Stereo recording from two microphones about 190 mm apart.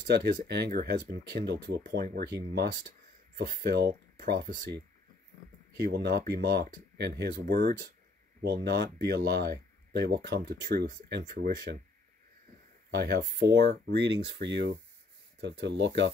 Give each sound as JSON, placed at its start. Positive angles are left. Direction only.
{"t": 0.1, "sound": "speech", "side_deg": -60}
{"t": 3.6, "sound": "speech", "side_deg": -60}
{"t": 5.9, "sound": "speech", "side_deg": -55}
{"t": 12.9, "sound": "speech", "side_deg": -60}